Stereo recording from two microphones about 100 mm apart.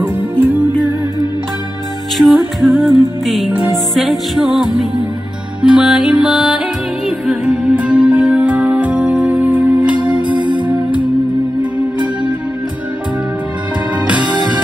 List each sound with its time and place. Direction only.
0.0 s music: 20° right (ahead or behind)
2.1 s music: centre (ahead or behind)
10.2 s music: 50° right (ahead or behind)
14.3 s music: 45° right (ahead or behind)